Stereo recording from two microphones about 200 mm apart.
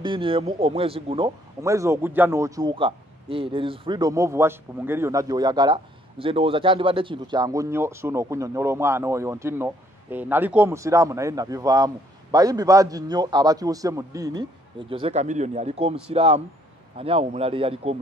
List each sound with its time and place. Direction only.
0.0 s speech: 25° right (ahead or behind)